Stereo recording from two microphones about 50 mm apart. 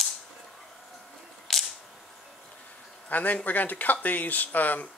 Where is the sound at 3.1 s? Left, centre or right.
Left.